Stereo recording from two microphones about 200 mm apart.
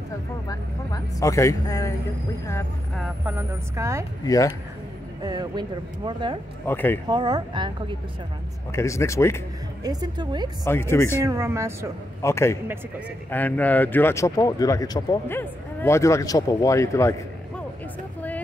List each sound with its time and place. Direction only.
0.5 s speech: 15° left (ahead or behind)
3.0 s speech: 10° right (ahead or behind)
4.2 s speech: 15° left (ahead or behind)
5.2 s speech: 20° right (ahead or behind)
6.6 s speech: 10° left (ahead or behind)
7.1 s speech: 20° right (ahead or behind)
8.7 s speech: 15° left (ahead or behind)
9.8 s speech: 20° right (ahead or behind)
10.6 s speech: 10° left (ahead or behind)
11.2 s speech: 15° right (ahead or behind)
12.2 s speech: 15° left (ahead or behind)